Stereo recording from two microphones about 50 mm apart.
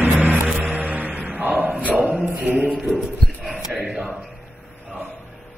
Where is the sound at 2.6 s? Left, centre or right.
Right.